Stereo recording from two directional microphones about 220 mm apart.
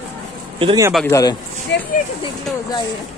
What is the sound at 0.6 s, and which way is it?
Speech, 25° right (ahead or behind).